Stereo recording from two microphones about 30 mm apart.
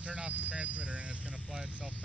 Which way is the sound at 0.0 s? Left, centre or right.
Right.